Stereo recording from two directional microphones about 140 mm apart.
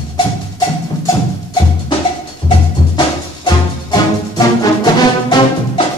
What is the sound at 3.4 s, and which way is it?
Music, 30° left (ahead or behind).